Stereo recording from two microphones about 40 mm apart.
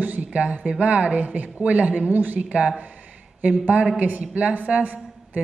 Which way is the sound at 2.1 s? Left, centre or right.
Right.